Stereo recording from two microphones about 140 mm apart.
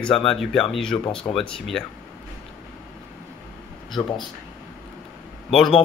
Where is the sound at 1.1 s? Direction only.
40° left (ahead or behind).